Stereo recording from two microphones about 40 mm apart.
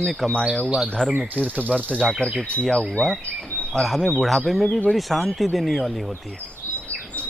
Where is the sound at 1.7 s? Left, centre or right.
Right.